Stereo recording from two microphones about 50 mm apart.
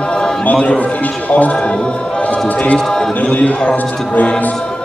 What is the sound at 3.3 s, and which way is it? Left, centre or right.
Speech, left.